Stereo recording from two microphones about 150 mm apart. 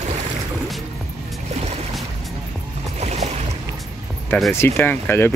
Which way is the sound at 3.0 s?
45° right (ahead or behind).